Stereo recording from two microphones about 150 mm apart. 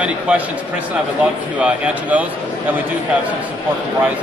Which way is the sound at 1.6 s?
10° right (ahead or behind).